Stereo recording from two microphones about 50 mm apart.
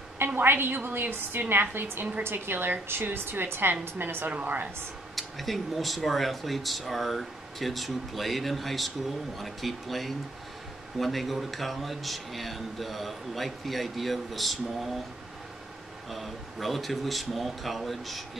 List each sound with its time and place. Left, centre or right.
0.4 s a woman's voice: right
5.1 s a man's voice: centre
16.1 s a man's voice: centre